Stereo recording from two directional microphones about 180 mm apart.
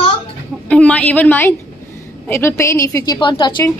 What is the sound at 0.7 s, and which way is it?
A woman's voice, 5° left (ahead or behind).